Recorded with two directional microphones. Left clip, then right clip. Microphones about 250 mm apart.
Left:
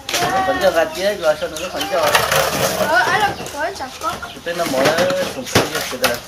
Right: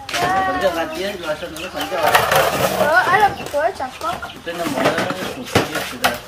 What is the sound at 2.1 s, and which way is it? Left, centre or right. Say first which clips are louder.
Speech: right 3 dB; right.